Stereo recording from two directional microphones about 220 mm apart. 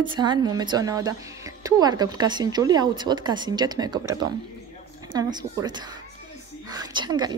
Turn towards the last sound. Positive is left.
turn(degrees=-20)  # may be behind; listen again after turning